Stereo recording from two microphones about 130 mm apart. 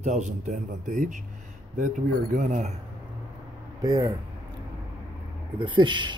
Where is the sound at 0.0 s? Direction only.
65° right (ahead or behind).